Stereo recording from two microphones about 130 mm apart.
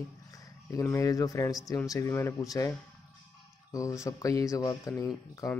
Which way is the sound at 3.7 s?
25° left (ahead or behind).